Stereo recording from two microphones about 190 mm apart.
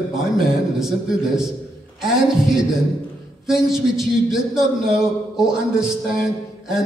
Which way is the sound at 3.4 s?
Centre (ahead or behind).